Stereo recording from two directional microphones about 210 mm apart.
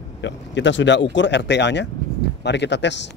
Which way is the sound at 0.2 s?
60° left (ahead or behind).